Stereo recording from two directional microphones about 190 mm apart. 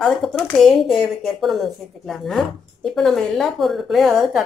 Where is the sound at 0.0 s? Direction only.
Centre (ahead or behind).